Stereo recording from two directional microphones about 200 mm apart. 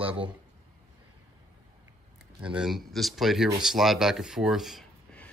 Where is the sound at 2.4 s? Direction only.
5° right (ahead or behind).